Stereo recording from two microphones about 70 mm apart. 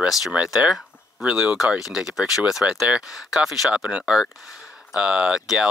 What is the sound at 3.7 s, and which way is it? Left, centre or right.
Speech, centre.